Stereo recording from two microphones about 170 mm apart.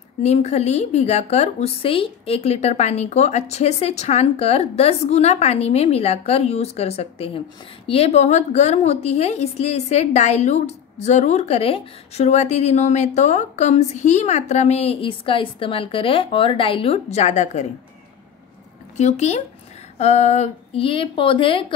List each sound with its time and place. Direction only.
0.2 s a woman's voice: 40° left (ahead or behind)
18.9 s a woman's voice: 40° left (ahead or behind)